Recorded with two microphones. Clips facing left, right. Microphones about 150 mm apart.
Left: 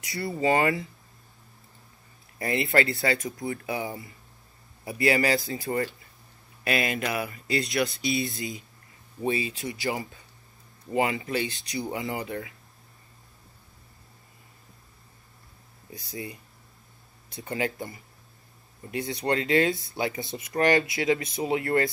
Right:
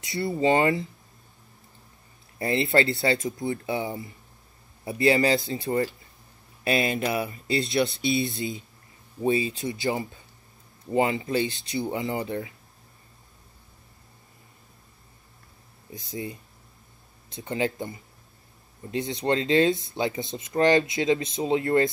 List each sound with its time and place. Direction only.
0.0 s speech: 25° right (ahead or behind)
2.3 s speech: 25° right (ahead or behind)
15.9 s speech: 25° right (ahead or behind)